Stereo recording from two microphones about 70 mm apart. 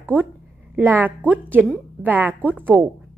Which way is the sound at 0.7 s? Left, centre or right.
Right.